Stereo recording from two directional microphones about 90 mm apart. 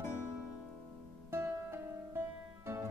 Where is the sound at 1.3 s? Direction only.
30° right (ahead or behind).